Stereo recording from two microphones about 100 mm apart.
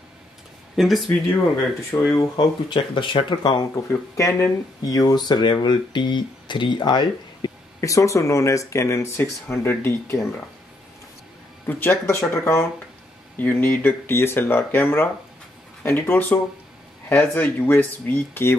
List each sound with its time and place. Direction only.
0.7 s speech: centre (ahead or behind)
1.9 s speech: 35° left (ahead or behind)
2.3 s speech: 50° left (ahead or behind)
3.7 s speech: 30° left (ahead or behind); by 7.5 s 50° left (ahead or behind)
7.8 s speech: 30° left (ahead or behind)
11.6 s speech: 25° left (ahead or behind)